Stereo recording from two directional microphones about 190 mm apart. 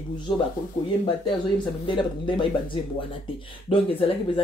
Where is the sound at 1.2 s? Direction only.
25° left (ahead or behind).